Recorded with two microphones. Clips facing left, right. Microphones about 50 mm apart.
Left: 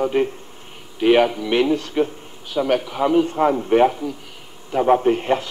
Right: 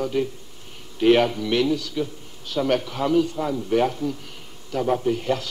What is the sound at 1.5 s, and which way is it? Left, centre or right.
Speech, left.